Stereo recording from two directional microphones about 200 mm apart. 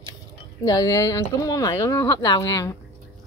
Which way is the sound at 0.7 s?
15° left (ahead or behind).